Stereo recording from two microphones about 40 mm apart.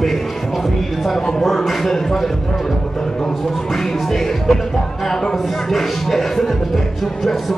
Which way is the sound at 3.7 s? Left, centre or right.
Centre.